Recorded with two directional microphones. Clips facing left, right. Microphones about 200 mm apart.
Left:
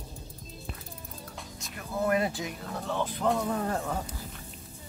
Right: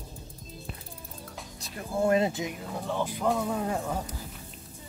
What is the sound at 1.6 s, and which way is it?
Speech, 30° right (ahead or behind).